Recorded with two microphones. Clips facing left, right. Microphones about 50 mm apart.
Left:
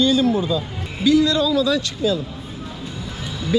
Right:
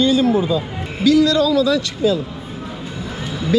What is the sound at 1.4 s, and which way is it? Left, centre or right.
Speech, right.